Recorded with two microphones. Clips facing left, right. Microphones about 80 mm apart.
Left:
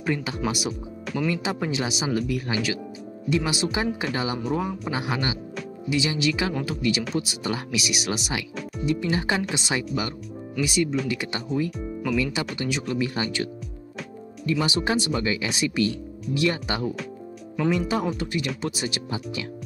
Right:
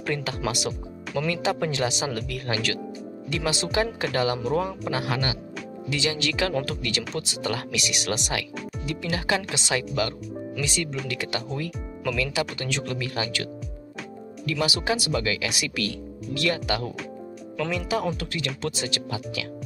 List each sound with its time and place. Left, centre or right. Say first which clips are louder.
0.0 s speech: left 1 dB; centre
4.9 s speech: even; centre
8.8 s speech: left 4 dB; left
12.5 s speech: left 4 dB; centre
14.9 s speech: left 1 dB; left
18.0 s speech: left 2 dB; centre